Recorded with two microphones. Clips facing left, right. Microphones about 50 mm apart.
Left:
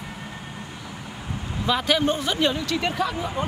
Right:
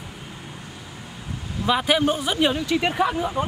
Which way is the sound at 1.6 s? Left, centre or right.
Centre.